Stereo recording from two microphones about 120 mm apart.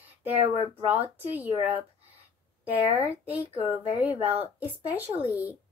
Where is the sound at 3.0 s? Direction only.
15° right (ahead or behind).